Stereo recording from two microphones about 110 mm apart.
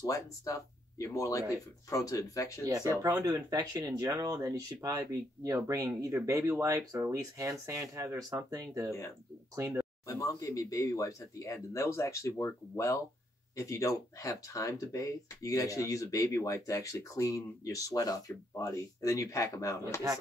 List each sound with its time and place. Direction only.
0.0 s speech: 30° left (ahead or behind)
3.0 s speech: 35° right (ahead or behind)
10.0 s speech: 30° left (ahead or behind)